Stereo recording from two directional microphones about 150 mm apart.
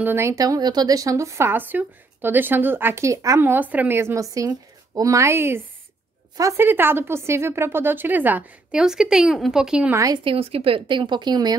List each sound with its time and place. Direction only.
0.0 s a woman's voice: 15° right (ahead or behind)
9.9 s a woman's voice: 25° right (ahead or behind)
10.2 s speech: 40° right (ahead or behind)